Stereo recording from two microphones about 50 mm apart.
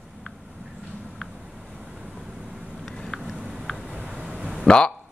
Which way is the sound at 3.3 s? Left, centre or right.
Centre.